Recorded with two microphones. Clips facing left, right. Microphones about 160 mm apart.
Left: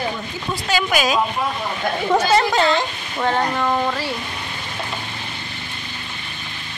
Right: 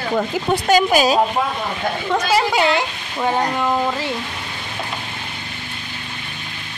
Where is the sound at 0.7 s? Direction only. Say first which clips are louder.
Right 5 dB; 40° right (ahead or behind).